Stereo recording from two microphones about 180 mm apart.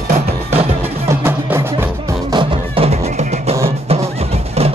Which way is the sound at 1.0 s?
15° right (ahead or behind).